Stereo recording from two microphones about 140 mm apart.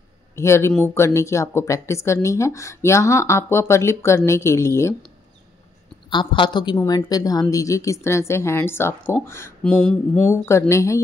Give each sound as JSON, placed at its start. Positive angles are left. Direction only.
{"t": 0.4, "sound": "speech", "side_deg": 20}
{"t": 6.0, "sound": "a woman's voice", "side_deg": 35}
{"t": 9.6, "sound": "mantra", "side_deg": 5}
{"t": 10.7, "sound": "speech", "side_deg": 20}